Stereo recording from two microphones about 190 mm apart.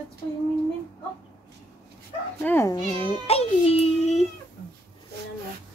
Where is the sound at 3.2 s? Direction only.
30° left (ahead or behind).